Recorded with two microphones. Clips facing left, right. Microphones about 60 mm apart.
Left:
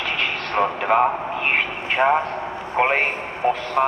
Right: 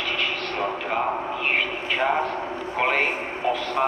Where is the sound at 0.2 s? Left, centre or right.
Left.